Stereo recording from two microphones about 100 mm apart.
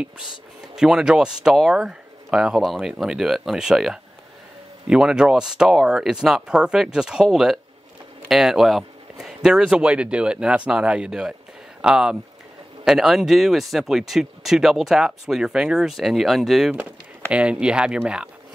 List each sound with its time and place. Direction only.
0.7 s speech: 5° right (ahead or behind)